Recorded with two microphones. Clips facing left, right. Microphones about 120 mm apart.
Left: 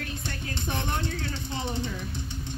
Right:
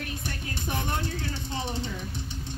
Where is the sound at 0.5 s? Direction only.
15° right (ahead or behind).